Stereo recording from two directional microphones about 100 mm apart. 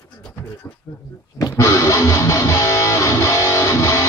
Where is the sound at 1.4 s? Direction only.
30° left (ahead or behind).